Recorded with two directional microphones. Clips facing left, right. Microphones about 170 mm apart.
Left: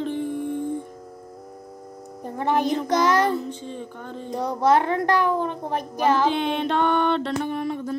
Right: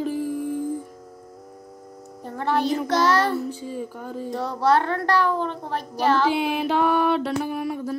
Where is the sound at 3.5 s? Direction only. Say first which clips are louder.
Right 3 dB; 10° right (ahead or behind).